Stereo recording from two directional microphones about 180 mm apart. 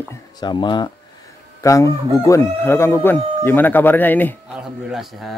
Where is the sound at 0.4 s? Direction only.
25° left (ahead or behind).